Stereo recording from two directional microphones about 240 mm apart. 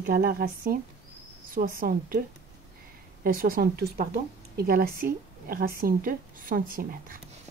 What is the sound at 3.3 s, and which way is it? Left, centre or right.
Speech, right.